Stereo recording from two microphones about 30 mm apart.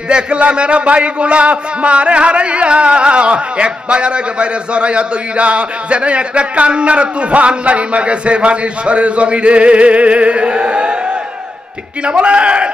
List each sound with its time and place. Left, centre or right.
0.1 s a man's voice: right
12.0 s a man's voice: right